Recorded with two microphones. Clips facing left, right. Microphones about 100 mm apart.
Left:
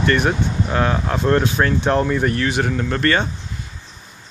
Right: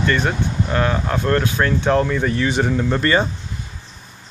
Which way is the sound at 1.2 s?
20° left (ahead or behind).